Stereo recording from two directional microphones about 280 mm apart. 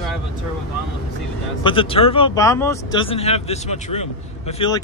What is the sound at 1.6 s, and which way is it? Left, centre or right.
Speech, centre.